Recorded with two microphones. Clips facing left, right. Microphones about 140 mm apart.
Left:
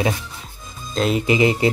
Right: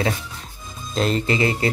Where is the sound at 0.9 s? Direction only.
5° left (ahead or behind).